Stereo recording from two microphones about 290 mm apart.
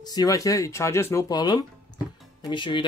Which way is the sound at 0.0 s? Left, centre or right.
Centre.